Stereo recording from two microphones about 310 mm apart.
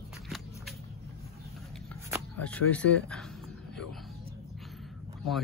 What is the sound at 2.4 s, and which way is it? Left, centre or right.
Speech, centre.